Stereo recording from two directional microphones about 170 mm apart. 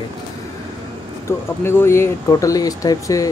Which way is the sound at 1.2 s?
15° left (ahead or behind).